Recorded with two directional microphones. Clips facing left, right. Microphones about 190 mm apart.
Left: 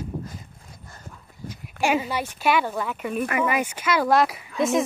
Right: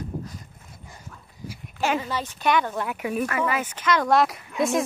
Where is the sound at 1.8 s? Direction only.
10° left (ahead or behind).